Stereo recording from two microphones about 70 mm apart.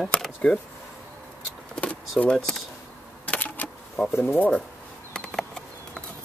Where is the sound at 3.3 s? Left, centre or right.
Left.